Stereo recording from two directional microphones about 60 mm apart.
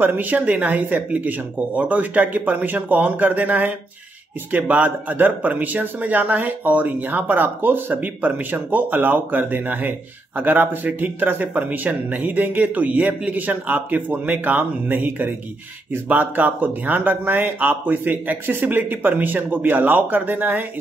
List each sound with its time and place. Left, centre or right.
0.0 s speech: right